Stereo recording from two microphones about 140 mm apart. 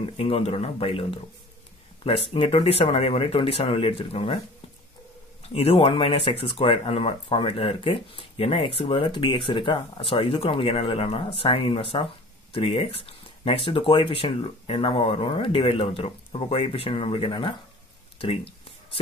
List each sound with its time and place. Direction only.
0.0 s speech: 45° left (ahead or behind)
5.5 s speech: 45° left (ahead or behind)
18.2 s a sound: 40° left (ahead or behind)